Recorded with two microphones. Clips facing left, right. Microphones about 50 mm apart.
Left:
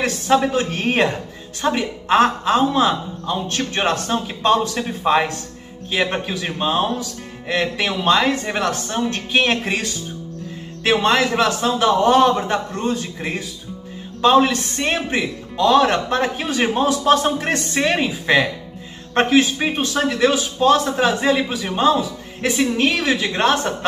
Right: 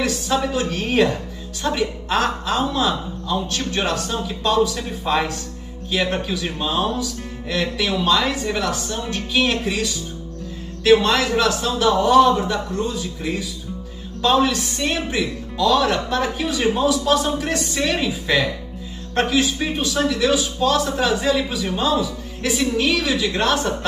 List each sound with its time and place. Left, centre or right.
0.0 s a man's voice: left